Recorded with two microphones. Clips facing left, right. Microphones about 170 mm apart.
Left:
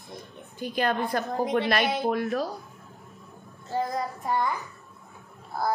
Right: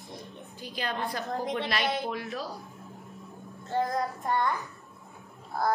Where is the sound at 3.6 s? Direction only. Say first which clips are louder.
Even; centre (ahead or behind).